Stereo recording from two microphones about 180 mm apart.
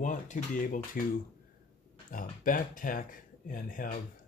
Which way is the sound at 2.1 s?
50° left (ahead or behind).